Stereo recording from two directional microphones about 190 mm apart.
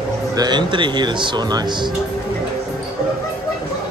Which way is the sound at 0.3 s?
20° right (ahead or behind).